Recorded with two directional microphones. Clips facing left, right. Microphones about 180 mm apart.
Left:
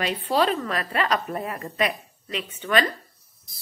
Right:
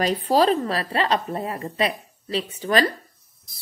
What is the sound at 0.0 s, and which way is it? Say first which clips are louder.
A woman's voice: right 4 dB; 40° right (ahead or behind).